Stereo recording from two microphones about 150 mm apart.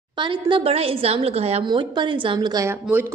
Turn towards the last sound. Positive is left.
turn(degrees=-15)  # may be behind; listen again after turning